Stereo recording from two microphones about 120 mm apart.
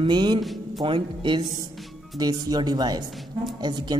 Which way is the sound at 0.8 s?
45° right (ahead or behind).